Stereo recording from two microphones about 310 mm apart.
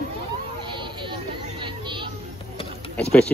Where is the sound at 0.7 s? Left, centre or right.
Centre.